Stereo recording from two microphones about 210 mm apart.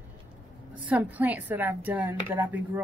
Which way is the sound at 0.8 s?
5° right (ahead or behind).